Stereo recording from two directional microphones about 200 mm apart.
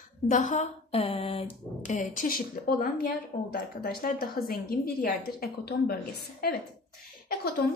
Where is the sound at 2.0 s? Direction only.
40° left (ahead or behind).